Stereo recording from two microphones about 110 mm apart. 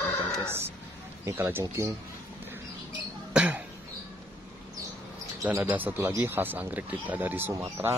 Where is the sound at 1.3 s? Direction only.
25° right (ahead or behind).